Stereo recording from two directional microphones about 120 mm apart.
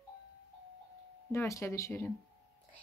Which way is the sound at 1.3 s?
25° left (ahead or behind).